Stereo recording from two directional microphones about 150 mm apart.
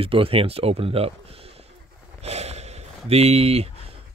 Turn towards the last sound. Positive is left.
turn(degrees=-45)  # may be behind; listen again after turning